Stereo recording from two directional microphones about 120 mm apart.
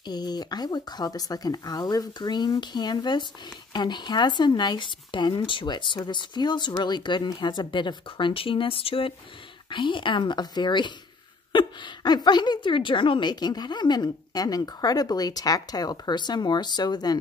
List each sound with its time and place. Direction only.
0.0 s a woman's voice: 35° left (ahead or behind)